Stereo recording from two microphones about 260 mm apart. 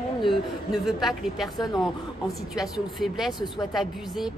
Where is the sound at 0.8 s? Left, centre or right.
Centre.